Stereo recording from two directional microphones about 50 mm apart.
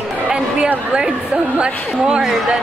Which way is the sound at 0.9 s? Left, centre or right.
Centre.